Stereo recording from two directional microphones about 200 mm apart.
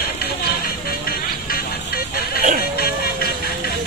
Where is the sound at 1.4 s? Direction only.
50° left (ahead or behind).